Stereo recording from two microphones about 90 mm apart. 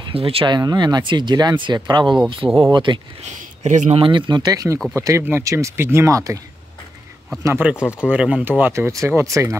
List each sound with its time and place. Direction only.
0.1 s speech: 90° right
0.6 s speech: 45° right (ahead or behind)
2.2 s speech: 70° right (ahead or behind); by 6.4 s 40° right (ahead or behind)
7.5 s speech: 15° right (ahead or behind)
8.7 s speech: 35° right (ahead or behind)